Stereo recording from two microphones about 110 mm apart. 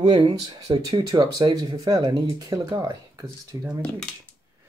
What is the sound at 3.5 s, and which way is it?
Speech, 35° right (ahead or behind).